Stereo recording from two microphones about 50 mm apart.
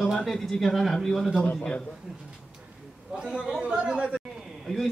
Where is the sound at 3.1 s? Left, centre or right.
Centre.